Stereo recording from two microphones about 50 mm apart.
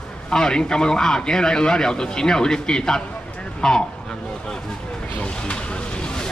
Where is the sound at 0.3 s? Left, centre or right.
Centre.